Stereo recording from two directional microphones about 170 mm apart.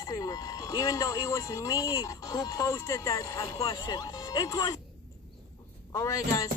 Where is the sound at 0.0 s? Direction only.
20° left (ahead or behind).